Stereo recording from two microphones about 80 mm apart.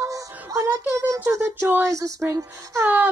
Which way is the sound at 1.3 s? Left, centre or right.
Right.